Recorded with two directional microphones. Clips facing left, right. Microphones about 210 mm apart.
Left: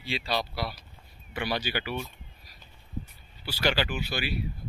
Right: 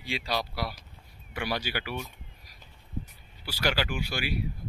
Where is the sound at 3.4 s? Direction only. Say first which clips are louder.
Left 2 dB; 10° right (ahead or behind).